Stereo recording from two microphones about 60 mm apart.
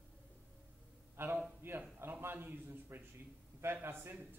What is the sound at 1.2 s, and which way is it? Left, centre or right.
Speech, right.